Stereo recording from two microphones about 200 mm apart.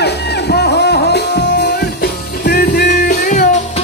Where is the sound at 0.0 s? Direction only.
55° left (ahead or behind).